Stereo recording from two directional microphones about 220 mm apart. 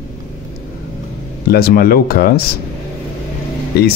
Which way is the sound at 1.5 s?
45° left (ahead or behind).